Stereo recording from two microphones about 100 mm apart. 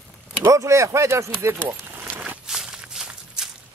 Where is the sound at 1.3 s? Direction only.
25° right (ahead or behind).